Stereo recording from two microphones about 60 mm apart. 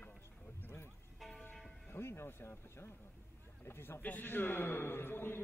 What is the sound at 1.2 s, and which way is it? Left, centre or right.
Church bell, centre.